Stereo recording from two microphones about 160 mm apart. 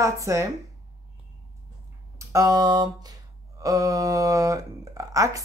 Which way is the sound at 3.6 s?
20° right (ahead or behind).